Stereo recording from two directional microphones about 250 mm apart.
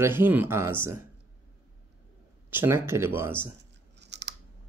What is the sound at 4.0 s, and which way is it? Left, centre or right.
Scissors, right.